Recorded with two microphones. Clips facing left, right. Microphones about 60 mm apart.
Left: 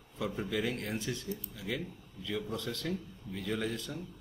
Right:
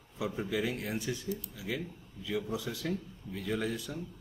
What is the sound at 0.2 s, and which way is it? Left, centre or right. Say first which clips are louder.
Speech: right 1 dB; centre.